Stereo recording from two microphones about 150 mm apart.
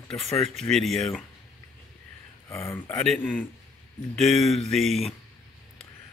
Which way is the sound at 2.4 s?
20° left (ahead or behind).